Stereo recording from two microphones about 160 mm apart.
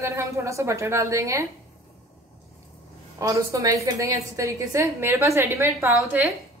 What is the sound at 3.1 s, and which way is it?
A woman's voice, 20° right (ahead or behind).